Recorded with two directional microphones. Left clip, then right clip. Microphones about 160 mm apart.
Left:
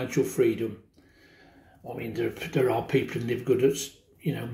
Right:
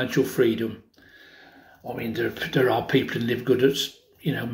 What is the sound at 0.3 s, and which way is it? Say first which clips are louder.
Speech: right 3 dB; 15° left (ahead or behind).